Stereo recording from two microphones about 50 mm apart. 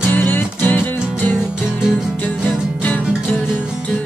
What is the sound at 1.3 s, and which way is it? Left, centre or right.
Music, centre.